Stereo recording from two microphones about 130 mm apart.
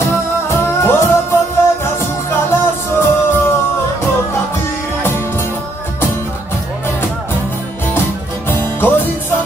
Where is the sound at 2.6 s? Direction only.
15° left (ahead or behind).